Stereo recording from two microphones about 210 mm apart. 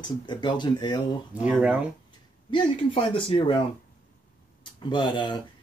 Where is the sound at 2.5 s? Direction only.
25° left (ahead or behind).